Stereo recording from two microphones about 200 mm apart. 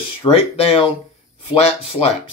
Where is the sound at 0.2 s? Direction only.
30° left (ahead or behind).